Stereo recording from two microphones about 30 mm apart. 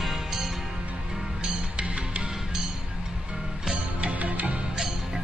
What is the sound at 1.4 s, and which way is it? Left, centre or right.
Music, right.